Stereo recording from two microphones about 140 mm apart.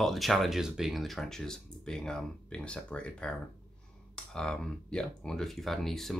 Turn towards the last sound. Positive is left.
turn(degrees=0)  # may be behind; listen again after turning